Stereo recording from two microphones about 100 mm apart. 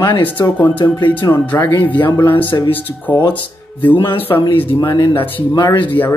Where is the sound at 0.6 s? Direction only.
50° left (ahead or behind).